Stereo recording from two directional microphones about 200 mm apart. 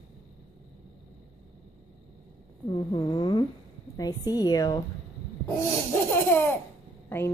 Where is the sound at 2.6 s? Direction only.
20° left (ahead or behind).